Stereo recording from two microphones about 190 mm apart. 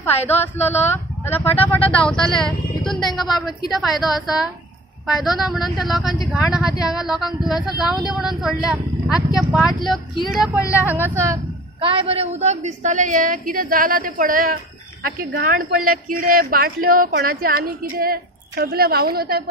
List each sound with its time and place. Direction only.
0.7 s a woman's voice: 10° left (ahead or behind); by 11.3 s 10° right (ahead or behind)
11.3 s a woman's voice: 30° right (ahead or behind); by 19.5 s 55° right (ahead or behind)